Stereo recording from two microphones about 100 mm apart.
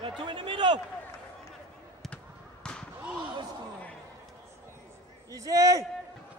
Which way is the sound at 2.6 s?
10° left (ahead or behind).